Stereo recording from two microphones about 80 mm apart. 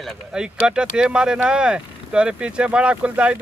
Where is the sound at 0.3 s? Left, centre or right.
Centre.